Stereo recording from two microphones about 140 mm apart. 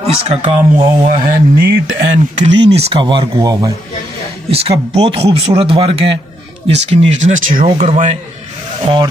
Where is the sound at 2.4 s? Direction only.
45° right (ahead or behind).